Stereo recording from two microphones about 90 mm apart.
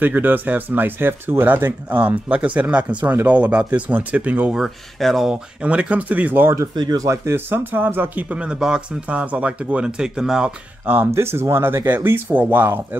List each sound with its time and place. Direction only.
0.0 s speech: 20° right (ahead or behind)
4.6 s speech: 5° right (ahead or behind)
5.3 s speech: 15° right (ahead or behind)
6.7 s speech: 50° right (ahead or behind)
7.1 s speech: 30° right (ahead or behind); by 10.5 s 10° right (ahead or behind)
10.9 s speech: 25° right (ahead or behind)